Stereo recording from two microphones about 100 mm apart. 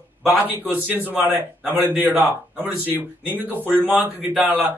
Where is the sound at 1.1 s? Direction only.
15° right (ahead or behind).